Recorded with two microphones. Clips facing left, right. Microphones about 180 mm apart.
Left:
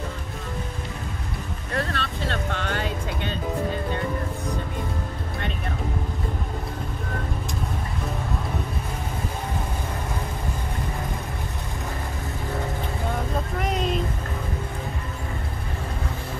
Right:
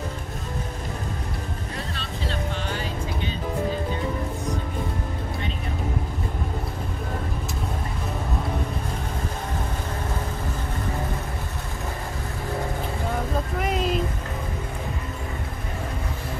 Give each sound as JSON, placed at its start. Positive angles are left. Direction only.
{"t": 1.7, "sound": "music", "side_deg": 65}
{"t": 13.6, "sound": "vehicle", "side_deg": 0}